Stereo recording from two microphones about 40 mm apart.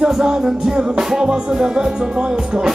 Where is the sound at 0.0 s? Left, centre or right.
Centre.